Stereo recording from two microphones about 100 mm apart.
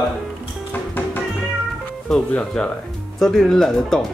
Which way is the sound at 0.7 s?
20° left (ahead or behind).